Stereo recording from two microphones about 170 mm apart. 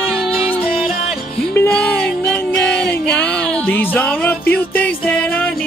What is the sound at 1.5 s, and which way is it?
Music, 10° left (ahead or behind).